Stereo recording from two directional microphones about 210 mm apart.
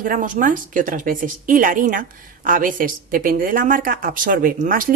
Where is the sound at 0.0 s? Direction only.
40° right (ahead or behind).